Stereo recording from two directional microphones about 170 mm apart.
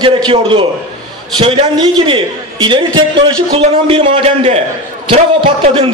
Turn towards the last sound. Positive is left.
turn(degrees=-30)  # may be behind; listen again after turning